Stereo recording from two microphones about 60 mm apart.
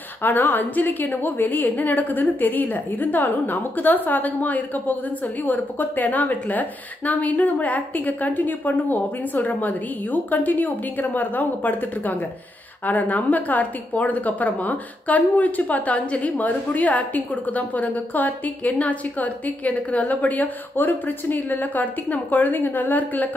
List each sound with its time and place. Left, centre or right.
0.2 s a woman's voice: left